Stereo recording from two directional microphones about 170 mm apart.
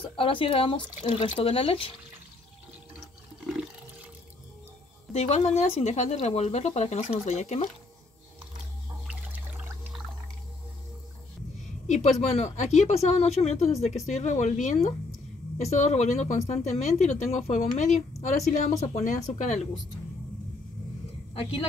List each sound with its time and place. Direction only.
0.1 s speech: 30° left (ahead or behind)
5.1 s speech: 40° left (ahead or behind)
9.0 s water: 10° right (ahead or behind)
11.9 s a woman's voice: 40° left (ahead or behind)
21.4 s speech: 35° left (ahead or behind)